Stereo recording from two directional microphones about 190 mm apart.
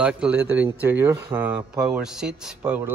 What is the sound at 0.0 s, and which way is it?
Speech, 10° right (ahead or behind).